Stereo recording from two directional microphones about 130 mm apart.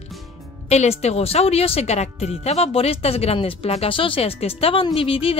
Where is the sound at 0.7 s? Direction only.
55° left (ahead or behind).